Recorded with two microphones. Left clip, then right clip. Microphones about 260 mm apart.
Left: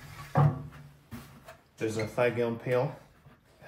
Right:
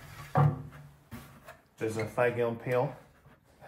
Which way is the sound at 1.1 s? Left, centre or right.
Centre.